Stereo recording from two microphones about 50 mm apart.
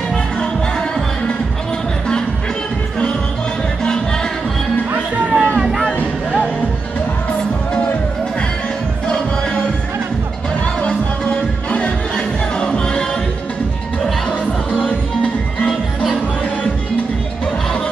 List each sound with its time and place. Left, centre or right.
0.1 s music: centre
4.9 s music: right
5.6 s a sound: centre
9.0 s music: centre
10.8 s music: left
14.7 s music: left